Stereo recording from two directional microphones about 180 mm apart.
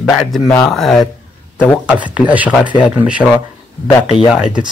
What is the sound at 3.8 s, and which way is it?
Speech, 30° left (ahead or behind).